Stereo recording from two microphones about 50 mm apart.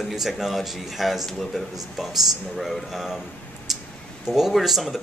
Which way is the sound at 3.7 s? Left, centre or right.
Centre.